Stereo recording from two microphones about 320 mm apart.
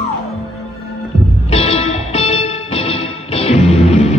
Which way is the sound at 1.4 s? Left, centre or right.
Centre.